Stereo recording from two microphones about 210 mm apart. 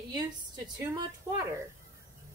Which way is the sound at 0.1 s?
15° right (ahead or behind).